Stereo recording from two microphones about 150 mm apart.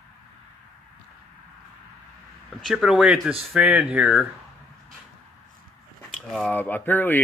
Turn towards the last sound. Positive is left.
turn(degrees=15)  # may be behind; listen again after turning